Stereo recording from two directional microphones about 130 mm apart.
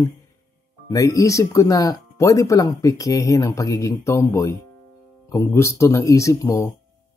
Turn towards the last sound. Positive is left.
turn(degrees=25)  # may be behind; listen again after turning